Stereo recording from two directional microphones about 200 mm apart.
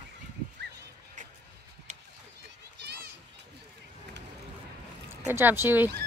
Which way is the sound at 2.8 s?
60° right (ahead or behind).